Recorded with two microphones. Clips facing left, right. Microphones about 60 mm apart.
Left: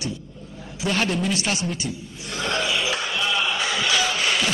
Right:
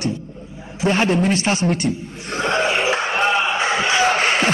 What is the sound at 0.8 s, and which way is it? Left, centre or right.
A man's voice, right.